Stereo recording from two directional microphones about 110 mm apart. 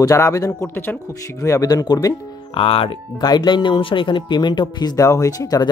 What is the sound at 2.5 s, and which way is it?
Speech, 55° left (ahead or behind).